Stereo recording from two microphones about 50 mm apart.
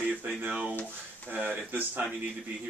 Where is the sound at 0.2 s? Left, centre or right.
Right.